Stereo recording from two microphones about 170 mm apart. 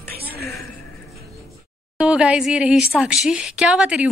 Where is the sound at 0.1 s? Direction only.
65° right (ahead or behind).